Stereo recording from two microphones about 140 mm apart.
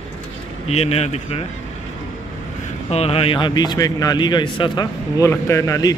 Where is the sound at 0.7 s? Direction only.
50° left (ahead or behind).